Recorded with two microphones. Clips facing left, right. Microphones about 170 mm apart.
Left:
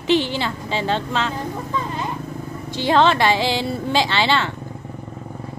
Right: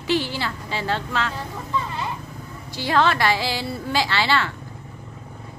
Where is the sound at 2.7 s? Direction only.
25° left (ahead or behind).